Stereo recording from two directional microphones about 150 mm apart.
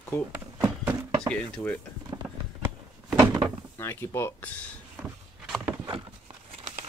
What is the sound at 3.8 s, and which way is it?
Speech, 15° left (ahead or behind).